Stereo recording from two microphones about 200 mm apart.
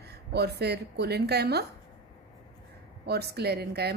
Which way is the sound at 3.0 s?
55° right (ahead or behind).